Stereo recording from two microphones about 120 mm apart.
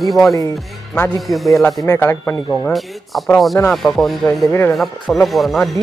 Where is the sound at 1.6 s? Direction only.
25° left (ahead or behind).